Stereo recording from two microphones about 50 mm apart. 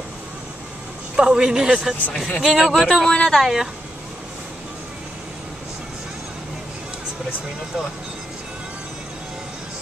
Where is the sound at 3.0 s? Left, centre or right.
Centre.